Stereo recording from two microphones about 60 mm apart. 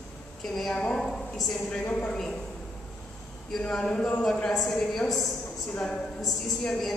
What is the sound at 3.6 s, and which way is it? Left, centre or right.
Speech, centre.